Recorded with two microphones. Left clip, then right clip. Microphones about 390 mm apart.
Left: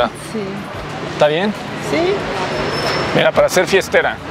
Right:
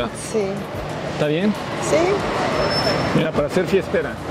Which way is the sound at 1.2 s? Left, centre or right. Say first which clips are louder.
Left 8 dB; left.